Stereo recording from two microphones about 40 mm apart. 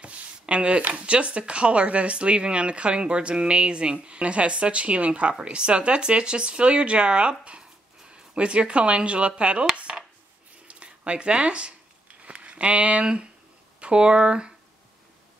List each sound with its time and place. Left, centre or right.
0.0 s speech: right
10.7 s speech: right